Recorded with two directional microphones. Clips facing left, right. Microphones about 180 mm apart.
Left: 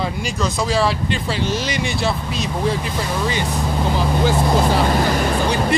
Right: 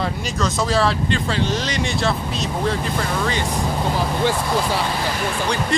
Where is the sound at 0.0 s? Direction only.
Centre (ahead or behind).